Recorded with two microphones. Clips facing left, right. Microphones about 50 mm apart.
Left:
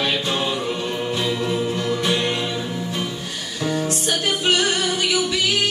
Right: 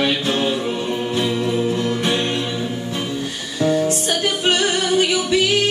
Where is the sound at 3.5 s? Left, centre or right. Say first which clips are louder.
Right 6 dB; right.